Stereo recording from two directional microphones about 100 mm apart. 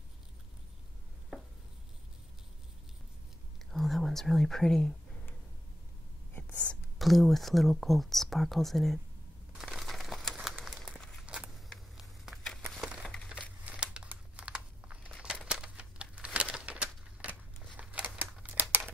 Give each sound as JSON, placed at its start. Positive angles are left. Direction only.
{"t": 3.7, "sound": "whispering", "side_deg": 0}
{"t": 7.0, "sound": "speech", "side_deg": 0}
{"t": 9.6, "sound": "crumpling", "side_deg": 0}
{"t": 11.2, "sound": "a sound", "side_deg": -10}
{"t": 13.0, "sound": "crushing", "side_deg": 10}
{"t": 13.3, "sound": "crumpling", "side_deg": -10}
{"t": 16.3, "sound": "a sound", "side_deg": -10}